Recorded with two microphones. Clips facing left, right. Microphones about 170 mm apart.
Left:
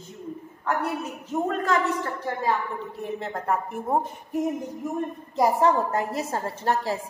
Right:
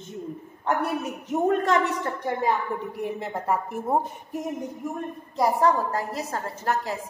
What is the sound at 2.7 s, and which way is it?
A woman's voice, 15° right (ahead or behind).